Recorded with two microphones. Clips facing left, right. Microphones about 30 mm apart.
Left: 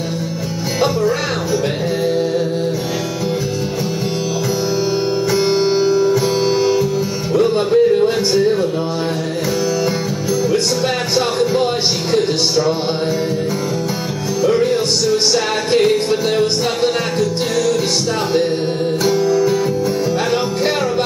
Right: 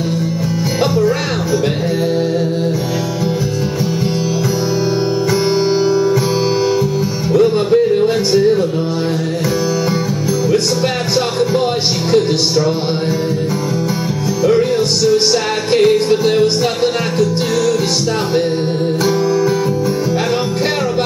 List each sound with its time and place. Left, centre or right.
5.3 s music: centre
7.3 s music: centre
11.1 s music: centre
14.4 s music: centre
19.0 s music: centre